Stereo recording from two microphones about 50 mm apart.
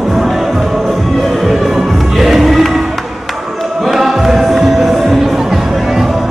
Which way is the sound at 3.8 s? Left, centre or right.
Centre.